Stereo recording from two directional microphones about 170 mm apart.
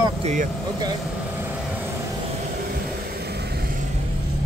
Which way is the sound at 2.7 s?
70° right (ahead or behind).